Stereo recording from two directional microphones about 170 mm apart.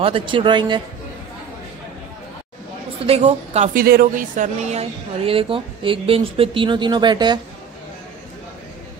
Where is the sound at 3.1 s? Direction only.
40° right (ahead or behind).